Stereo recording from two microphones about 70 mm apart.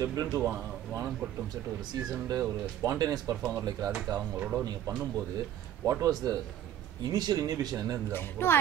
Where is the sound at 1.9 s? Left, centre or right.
Right.